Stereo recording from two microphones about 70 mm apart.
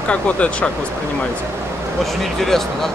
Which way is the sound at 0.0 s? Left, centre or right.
Centre.